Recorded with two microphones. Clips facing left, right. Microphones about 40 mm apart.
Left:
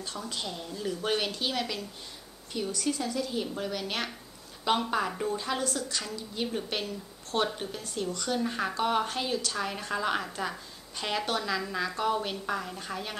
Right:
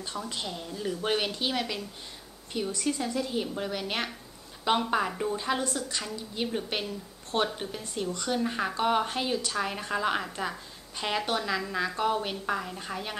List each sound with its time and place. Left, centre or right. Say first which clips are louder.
0.0 s a woman's voice: right 1 dB; centre
2.8 s a woman's voice: right 1 dB; centre
8.4 s a woman's voice: right 1 dB; centre